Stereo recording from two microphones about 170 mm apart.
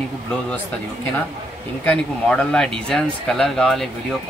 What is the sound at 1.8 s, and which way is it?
Speech, 5° left (ahead or behind).